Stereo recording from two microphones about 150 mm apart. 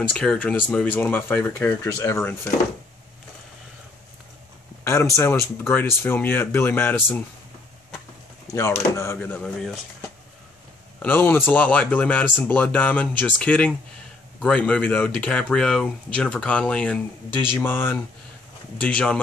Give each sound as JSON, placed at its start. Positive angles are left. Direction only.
{"t": 0.1, "sound": "speech", "side_deg": 5}
{"t": 4.8, "sound": "speech", "side_deg": 20}
{"t": 8.5, "sound": "speech", "side_deg": 20}
{"t": 11.0, "sound": "speech", "side_deg": 15}